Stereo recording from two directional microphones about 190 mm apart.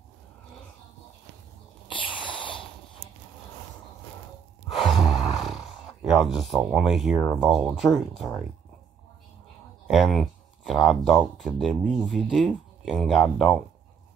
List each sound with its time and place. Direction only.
1.9 s a sound: 25° left (ahead or behind)
4.8 s speech: centre (ahead or behind)
9.8 s speech: centre (ahead or behind)